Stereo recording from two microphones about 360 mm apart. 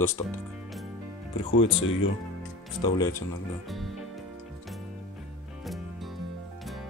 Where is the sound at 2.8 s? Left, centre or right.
Centre.